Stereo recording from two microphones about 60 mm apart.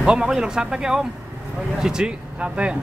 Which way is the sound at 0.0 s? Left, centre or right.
Centre.